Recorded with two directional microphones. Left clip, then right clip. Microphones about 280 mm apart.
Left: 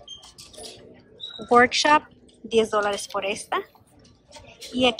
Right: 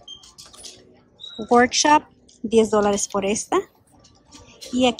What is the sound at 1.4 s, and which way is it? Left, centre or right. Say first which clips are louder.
A woman's voice: right 1 dB; centre.